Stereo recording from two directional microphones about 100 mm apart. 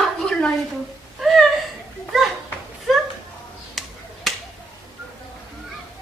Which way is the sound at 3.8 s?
5° right (ahead or behind).